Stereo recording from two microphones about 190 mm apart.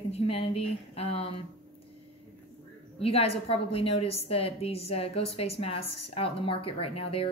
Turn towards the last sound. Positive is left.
turn(degrees=30)  # may be behind; listen again after turning